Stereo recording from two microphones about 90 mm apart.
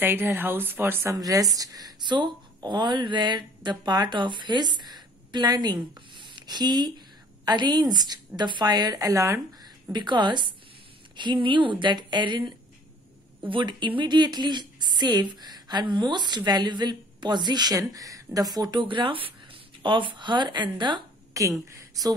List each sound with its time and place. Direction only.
0.0 s speech: 25° right (ahead or behind)
1.1 s speech: 40° right (ahead or behind)
9.9 s speech: 55° right (ahead or behind)
21.3 s a sound: 35° right (ahead or behind)